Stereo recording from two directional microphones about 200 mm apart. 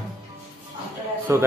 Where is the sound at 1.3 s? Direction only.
15° right (ahead or behind).